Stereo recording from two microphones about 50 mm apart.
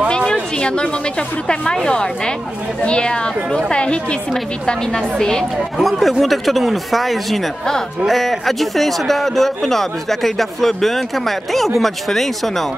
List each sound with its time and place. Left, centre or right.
0.1 s a sound: centre
1.5 s a woman's voice: centre
5.8 s a man's voice: centre